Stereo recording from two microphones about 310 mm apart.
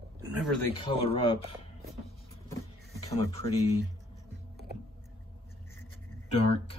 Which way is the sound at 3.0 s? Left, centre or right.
Centre.